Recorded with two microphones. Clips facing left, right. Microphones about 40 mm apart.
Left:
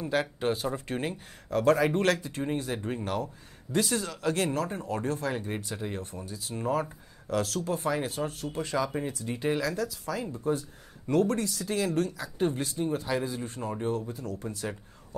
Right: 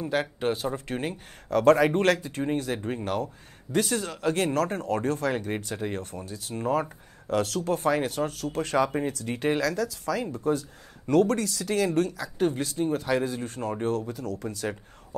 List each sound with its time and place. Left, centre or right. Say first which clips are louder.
0.1 s speech: right 1 dB; right
8.3 s speech: right 4 dB; right
13.8 s speech: right 3 dB; right